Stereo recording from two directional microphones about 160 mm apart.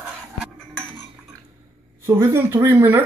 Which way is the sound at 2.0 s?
15° right (ahead or behind).